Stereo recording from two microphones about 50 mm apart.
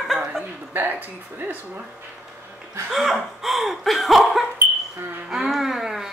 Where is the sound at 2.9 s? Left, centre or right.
Centre.